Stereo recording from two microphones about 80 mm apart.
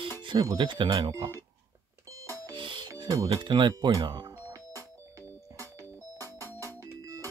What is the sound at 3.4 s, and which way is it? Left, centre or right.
Speech, right.